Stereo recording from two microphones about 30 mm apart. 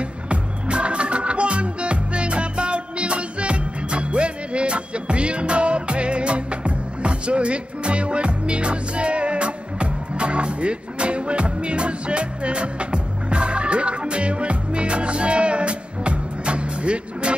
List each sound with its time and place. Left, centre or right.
0.0 s music: right